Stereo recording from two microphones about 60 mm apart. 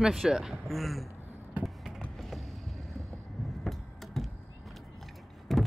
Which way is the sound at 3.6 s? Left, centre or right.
Centre.